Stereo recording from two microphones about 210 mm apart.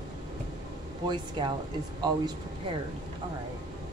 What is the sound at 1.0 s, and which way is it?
Speech, 20° right (ahead or behind).